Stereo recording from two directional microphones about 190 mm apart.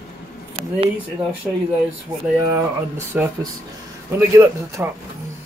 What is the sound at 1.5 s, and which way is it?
Speech, 5° right (ahead or behind).